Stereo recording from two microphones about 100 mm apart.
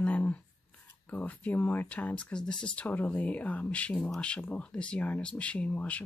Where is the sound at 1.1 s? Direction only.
15° left (ahead or behind).